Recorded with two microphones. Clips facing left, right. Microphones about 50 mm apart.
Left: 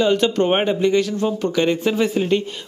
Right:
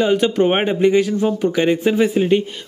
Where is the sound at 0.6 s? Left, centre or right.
Right.